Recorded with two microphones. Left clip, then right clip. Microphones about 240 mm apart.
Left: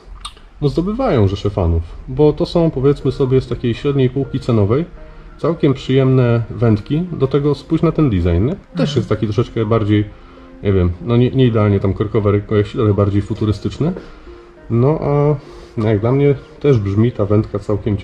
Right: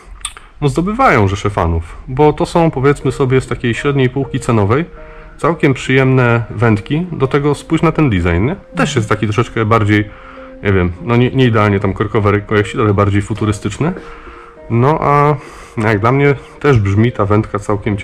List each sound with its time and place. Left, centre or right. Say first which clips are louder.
0.6 s a man's voice: right 5 dB; centre